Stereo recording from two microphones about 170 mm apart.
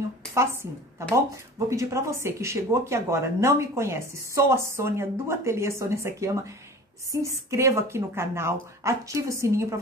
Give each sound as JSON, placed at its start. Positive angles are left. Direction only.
{"t": 0.3, "sound": "a woman's voice", "side_deg": -15}